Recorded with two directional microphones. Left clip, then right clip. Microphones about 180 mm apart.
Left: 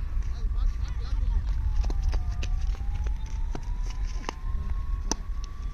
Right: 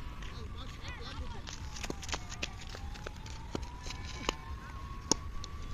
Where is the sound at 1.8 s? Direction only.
40° left (ahead or behind).